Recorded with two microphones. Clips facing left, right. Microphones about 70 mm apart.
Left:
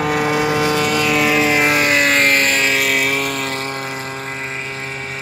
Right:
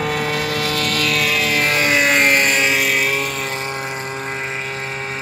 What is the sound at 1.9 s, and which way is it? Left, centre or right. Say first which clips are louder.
Vehicle: even; centre.